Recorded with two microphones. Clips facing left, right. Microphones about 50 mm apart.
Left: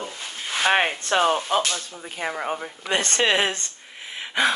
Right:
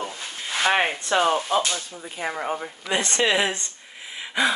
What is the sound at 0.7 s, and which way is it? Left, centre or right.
Speech, left.